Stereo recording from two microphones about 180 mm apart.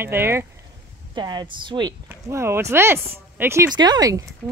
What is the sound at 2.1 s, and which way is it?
Speech, 15° right (ahead or behind).